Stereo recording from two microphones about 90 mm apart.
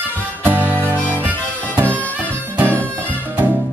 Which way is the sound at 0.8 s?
20° right (ahead or behind).